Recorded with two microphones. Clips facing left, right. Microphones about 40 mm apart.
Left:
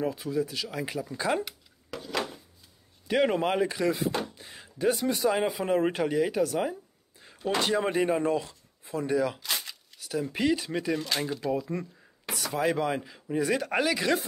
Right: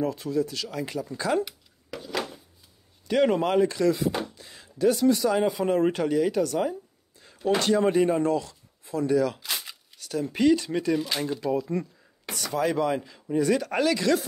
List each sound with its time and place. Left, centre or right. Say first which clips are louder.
0.0 s speech: right 3 dB; centre
1.4 s a sound: right 4 dB; centre
3.1 s speech: right 3 dB; centre
5.4 s speech: right 3 dB; centre
9.4 s a sound: even; centre
9.9 s speech: right 3 dB; centre